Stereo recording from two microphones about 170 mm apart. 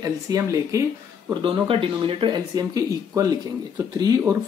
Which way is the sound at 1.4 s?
30° right (ahead or behind).